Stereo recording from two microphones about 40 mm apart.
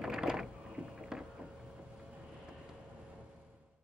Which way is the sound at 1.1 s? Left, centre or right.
Centre.